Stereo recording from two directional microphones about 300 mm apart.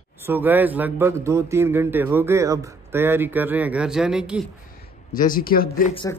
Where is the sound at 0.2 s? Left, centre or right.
Centre.